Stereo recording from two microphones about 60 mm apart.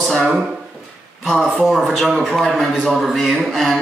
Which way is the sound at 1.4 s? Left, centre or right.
Centre.